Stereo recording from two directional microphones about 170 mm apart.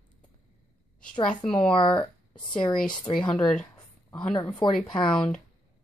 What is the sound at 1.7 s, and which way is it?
Speech, 30° left (ahead or behind).